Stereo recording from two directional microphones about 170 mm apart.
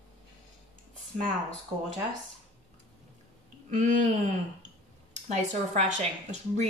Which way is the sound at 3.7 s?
45° right (ahead or behind).